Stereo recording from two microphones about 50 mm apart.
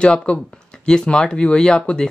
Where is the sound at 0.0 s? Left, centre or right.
Centre.